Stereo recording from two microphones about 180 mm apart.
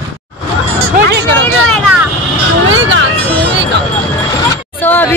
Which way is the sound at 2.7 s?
90° right.